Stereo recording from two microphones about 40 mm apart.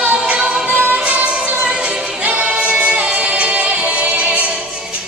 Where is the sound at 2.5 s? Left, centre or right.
Right.